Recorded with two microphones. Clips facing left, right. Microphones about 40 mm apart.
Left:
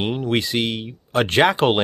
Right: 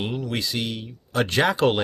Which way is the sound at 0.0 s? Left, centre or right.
Left.